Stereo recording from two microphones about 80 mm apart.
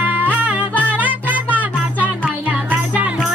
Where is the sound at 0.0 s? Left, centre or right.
Right.